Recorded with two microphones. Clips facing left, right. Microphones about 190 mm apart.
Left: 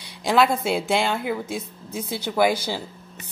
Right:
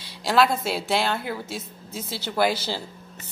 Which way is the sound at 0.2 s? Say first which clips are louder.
Left 1 dB; centre (ahead or behind).